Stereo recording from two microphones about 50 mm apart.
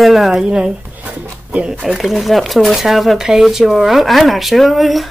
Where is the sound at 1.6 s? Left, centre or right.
Centre.